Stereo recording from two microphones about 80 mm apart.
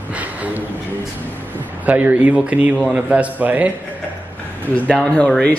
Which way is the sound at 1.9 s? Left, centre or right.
Centre.